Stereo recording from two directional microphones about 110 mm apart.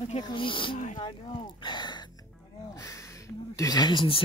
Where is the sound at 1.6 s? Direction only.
40° left (ahead or behind).